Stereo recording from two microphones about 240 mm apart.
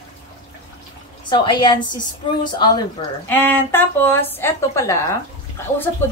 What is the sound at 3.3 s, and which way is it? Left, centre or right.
A woman's voice, centre.